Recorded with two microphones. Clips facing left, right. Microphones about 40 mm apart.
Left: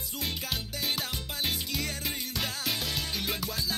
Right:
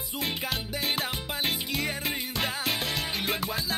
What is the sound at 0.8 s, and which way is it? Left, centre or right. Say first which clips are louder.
Music: right 3 dB; centre.